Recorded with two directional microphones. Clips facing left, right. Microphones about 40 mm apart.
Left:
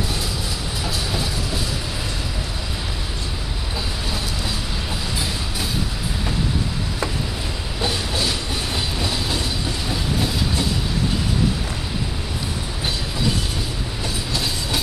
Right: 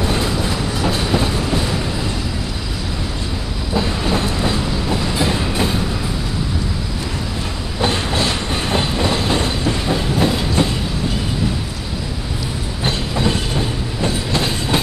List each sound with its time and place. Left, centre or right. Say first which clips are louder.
0.0 s train: right 7 dB; right
5.1 s train: right 8 dB; right
7.8 s train: right 5 dB; right
12.8 s train: right 5 dB; right